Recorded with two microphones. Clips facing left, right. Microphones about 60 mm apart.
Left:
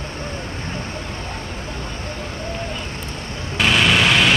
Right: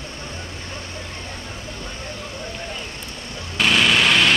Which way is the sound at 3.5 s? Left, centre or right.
Centre.